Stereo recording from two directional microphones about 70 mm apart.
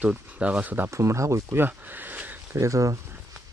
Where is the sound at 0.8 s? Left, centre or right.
Right.